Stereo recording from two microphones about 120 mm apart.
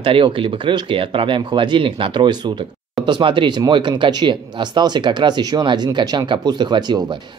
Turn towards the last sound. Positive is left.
turn(degrees=-35)  # may be behind; listen again after turning